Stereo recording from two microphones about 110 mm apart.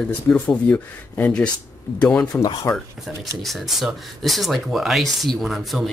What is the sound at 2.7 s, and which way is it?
Speech, 30° left (ahead or behind).